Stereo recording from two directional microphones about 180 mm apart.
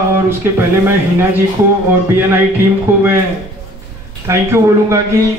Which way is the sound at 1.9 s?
15° right (ahead or behind).